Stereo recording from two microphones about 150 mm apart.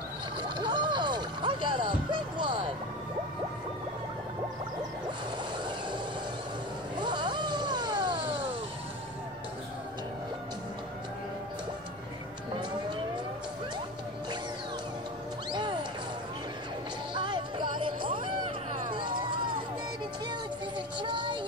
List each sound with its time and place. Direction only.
0.4 s a sound: 30° right (ahead or behind)
7.0 s vehicle: 30° right (ahead or behind)
15.5 s music: 30° right (ahead or behind)
17.1 s music: 30° right (ahead or behind)
18.9 s a sound: 30° right (ahead or behind)
20.2 s child singing: 30° right (ahead or behind)